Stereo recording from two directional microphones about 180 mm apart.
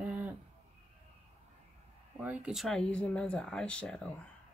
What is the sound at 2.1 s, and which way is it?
Speech, 5° right (ahead or behind).